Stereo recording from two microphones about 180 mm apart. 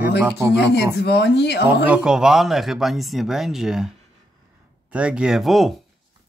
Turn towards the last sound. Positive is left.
turn(degrees=0)  # may be behind; listen again after turning